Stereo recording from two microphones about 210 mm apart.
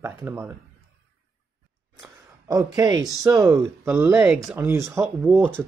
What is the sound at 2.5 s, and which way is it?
Speech, 15° right (ahead or behind).